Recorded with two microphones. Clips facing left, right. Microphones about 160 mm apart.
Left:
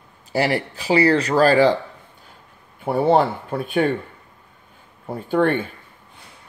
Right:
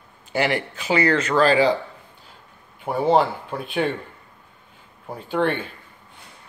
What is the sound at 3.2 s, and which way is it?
Speech, 45° left (ahead or behind).